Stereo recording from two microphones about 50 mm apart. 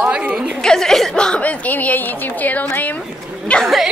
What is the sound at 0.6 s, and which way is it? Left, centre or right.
Speech, centre.